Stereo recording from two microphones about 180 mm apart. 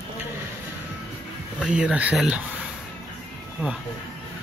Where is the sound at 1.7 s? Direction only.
5° right (ahead or behind).